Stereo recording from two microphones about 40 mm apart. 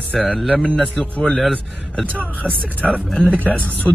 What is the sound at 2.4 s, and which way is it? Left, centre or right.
Speech, right.